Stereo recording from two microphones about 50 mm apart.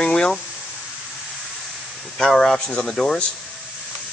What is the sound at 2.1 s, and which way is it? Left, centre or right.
Speech, centre.